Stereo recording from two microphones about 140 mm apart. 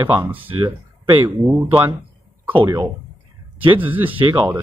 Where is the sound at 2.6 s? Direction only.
30° right (ahead or behind).